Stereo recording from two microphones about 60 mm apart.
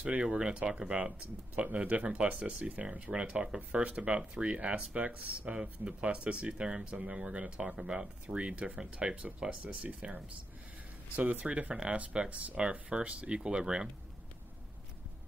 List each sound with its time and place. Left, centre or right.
0.2 s speech: centre